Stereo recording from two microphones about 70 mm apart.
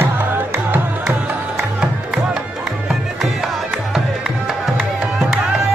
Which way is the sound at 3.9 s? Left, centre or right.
Centre.